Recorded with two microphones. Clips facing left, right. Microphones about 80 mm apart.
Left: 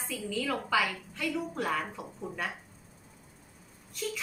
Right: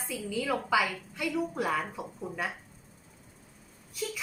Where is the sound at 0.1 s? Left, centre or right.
Centre.